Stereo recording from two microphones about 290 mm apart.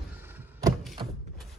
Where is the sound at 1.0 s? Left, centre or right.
Centre.